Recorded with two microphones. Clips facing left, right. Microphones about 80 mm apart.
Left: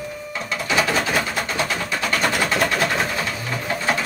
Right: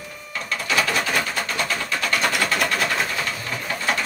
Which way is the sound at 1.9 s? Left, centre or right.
Left.